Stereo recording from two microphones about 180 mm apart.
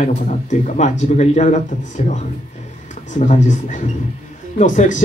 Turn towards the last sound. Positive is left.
turn(degrees=45)  # may be behind; listen again after turning